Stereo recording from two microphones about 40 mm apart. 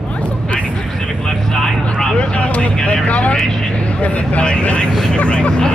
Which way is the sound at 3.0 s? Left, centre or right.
Left.